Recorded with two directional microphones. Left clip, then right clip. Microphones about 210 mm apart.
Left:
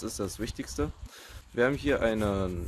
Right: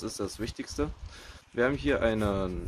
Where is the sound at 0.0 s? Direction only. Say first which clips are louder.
Even; 30° left (ahead or behind).